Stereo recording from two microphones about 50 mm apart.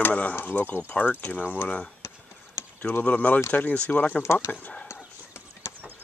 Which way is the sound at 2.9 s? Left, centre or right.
Left.